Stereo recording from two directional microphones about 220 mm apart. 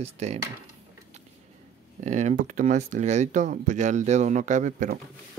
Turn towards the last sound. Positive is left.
turn(degrees=-35)  # may be behind; listen again after turning